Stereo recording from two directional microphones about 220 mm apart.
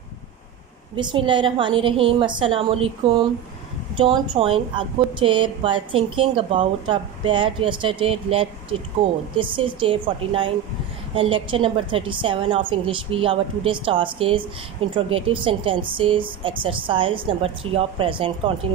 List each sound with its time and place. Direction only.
0.9 s a woman's voice: 20° right (ahead or behind)